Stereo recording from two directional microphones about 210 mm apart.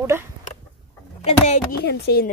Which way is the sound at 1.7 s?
50° left (ahead or behind).